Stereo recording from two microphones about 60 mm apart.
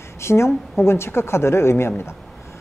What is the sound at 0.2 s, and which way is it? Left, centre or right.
Speech, left.